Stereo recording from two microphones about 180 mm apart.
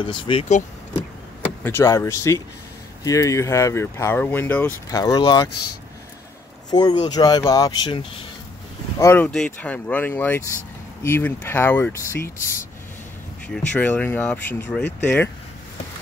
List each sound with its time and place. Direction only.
0.0 s speech: 30° left (ahead or behind)
1.6 s speech: 15° left (ahead or behind)
6.7 s speech: 25° left (ahead or behind)
9.0 s speech: 10° left (ahead or behind)
13.7 s speech: 10° left (ahead or behind)